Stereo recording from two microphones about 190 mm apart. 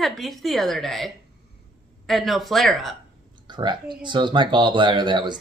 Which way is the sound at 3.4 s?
25° right (ahead or behind).